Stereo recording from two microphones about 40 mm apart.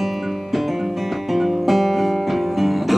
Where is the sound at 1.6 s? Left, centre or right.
Centre.